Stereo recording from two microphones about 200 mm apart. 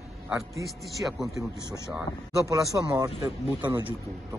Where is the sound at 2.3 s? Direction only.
15° right (ahead or behind).